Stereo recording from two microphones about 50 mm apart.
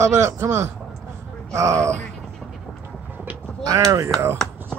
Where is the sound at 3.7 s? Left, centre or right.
Right.